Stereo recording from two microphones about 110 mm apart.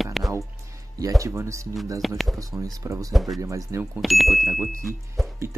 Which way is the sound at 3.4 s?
30° right (ahead or behind).